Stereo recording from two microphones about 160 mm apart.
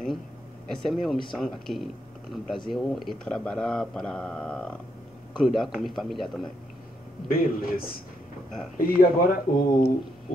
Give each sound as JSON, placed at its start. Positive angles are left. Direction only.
{"t": 0.7, "sound": "speech", "side_deg": 0}
{"t": 7.2, "sound": "speech", "side_deg": 65}